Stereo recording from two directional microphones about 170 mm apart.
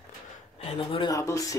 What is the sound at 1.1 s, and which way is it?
Speech, 20° left (ahead or behind).